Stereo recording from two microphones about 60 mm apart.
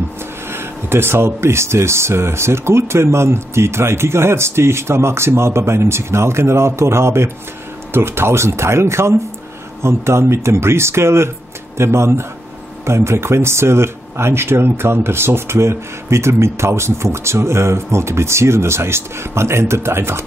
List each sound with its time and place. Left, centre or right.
0.5 s speech: right